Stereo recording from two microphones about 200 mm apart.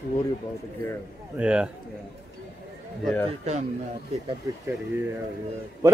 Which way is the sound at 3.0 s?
5° left (ahead or behind).